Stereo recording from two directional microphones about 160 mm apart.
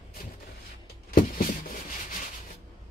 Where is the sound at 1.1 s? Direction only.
60° left (ahead or behind).